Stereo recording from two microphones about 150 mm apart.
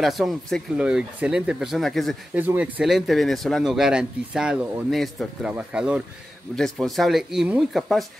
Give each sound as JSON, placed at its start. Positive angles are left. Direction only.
{"t": 0.0, "sound": "speech", "side_deg": 0}
{"t": 2.3, "sound": "speech", "side_deg": -10}